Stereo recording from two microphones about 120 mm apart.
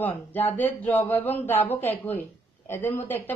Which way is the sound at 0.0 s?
15° left (ahead or behind).